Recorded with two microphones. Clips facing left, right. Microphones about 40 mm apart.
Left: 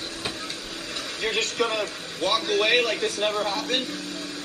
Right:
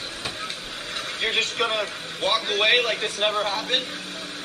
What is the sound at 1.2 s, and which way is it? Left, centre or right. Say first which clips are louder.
A man's voice: right 1 dB; right.